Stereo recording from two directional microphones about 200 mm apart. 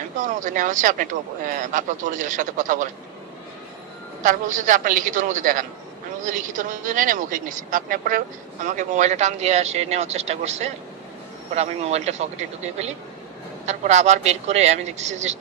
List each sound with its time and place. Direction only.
0.4 s speech: 40° right (ahead or behind)
4.2 s speech: 40° right (ahead or behind)